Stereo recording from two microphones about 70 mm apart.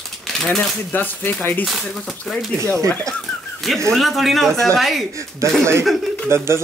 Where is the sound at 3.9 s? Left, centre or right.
Centre.